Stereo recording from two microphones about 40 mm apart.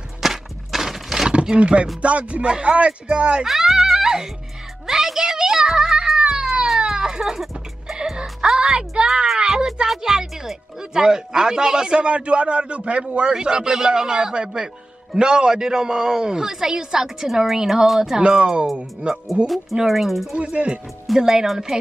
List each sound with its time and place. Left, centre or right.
0.2 s walk: centre
1.3 s roaring cats: right
1.6 s music: right
2.5 s a man's voice: right
3.4 s music: centre
6.8 s baby cry: centre
7.9 s music: centre
9.0 s a sound: right
9.8 s music: centre
10.8 s a man's voice: centre
18.2 s a man's voice: right
19.4 s speech: centre
20.3 s music: right
21.2 s a woman's voice: centre